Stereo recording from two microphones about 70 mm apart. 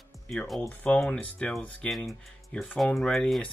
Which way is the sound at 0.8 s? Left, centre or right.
Centre.